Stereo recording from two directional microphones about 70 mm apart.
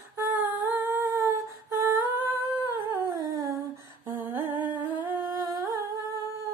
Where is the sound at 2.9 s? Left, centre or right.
Right.